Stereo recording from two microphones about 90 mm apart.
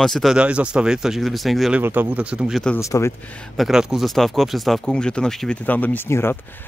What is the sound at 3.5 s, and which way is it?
Speech, 5° right (ahead or behind).